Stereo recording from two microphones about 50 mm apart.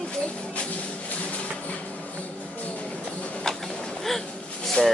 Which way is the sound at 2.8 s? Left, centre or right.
Left.